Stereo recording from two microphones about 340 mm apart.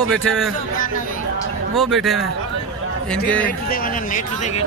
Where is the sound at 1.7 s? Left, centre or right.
Centre.